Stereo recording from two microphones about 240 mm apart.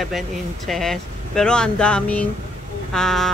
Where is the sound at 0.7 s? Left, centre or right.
Centre.